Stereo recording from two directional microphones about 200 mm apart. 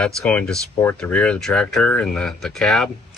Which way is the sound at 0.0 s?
5° left (ahead or behind).